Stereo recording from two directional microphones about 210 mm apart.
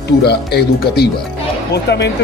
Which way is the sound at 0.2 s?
50° left (ahead or behind).